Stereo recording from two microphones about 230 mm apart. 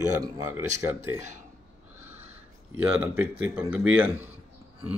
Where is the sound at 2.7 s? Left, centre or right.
Centre.